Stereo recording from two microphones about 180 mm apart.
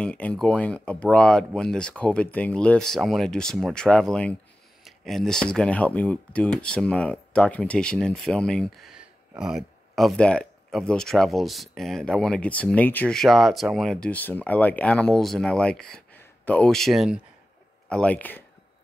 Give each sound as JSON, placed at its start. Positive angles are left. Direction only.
{"t": 0.0, "sound": "speech", "side_deg": 5}